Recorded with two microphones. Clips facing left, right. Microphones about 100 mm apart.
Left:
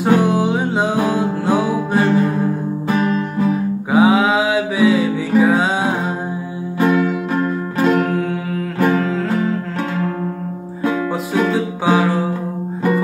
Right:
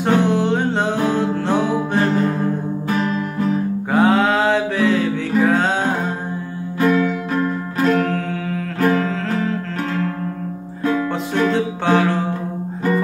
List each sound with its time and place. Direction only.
0.0 s music: 5° left (ahead or behind)
6.8 s music: 20° left (ahead or behind)
7.9 s music: 5° left (ahead or behind)
10.8 s music: 10° left (ahead or behind)